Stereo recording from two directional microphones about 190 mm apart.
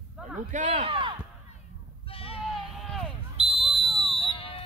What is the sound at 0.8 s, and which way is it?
Speech, 25° right (ahead or behind).